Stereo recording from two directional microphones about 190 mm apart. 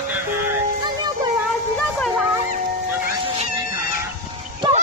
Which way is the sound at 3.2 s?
30° right (ahead or behind).